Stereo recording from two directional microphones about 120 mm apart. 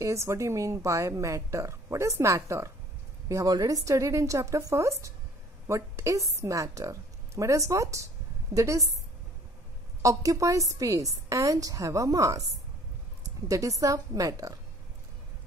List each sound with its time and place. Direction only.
0.0 s speech: 25° right (ahead or behind)
10.0 s speech: 25° right (ahead or behind)
13.5 s speech: 30° right (ahead or behind)